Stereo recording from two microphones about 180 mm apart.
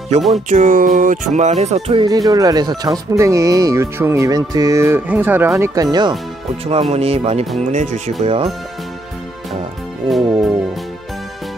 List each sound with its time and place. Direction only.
0.5 s music: 45° right (ahead or behind)
2.0 s speech: 20° right (ahead or behind)
6.6 s music: 35° right (ahead or behind)
10.0 s music: centre (ahead or behind)